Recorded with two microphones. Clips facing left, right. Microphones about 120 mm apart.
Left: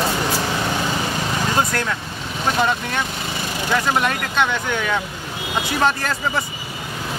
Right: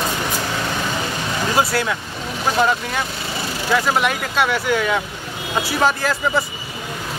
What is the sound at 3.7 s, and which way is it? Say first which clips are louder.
Speech: right 1 dB; 5° right (ahead or behind).